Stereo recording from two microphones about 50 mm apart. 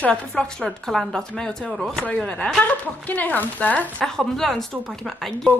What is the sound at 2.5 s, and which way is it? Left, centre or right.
Speech, left.